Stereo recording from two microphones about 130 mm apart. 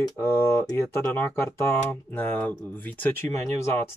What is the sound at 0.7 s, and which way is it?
Speech, 20° left (ahead or behind).